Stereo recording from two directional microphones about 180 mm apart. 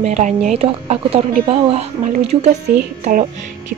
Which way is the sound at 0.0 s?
40° right (ahead or behind).